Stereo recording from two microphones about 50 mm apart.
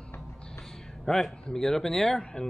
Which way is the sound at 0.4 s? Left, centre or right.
Centre.